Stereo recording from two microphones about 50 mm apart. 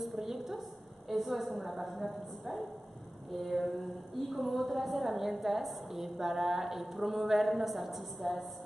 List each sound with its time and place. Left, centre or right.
0.0 s a sound: centre
1.0 s a woman's voice: centre
3.3 s a woman's voice: centre